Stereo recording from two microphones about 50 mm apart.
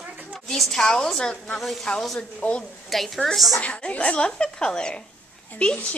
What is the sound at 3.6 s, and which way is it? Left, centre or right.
A woman's voice, left.